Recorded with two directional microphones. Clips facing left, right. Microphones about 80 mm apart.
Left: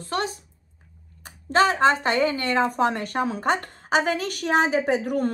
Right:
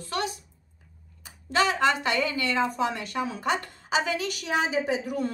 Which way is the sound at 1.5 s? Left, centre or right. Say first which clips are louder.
Left 5 dB; left.